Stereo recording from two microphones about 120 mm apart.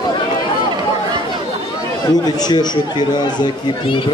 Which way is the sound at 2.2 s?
35° left (ahead or behind).